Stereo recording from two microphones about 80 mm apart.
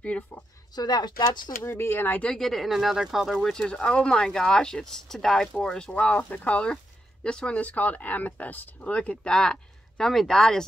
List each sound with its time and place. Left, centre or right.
0.7 s speech: left
1.6 s speech: left
2.3 s speech: centre
3.4 s speech: centre